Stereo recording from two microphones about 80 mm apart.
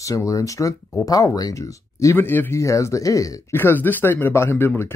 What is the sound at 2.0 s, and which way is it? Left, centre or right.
Speech, left.